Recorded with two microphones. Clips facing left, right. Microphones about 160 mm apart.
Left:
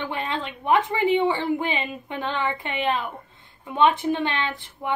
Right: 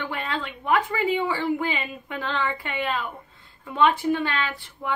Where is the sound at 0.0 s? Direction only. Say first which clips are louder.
Left 1 dB; 20° left (ahead or behind).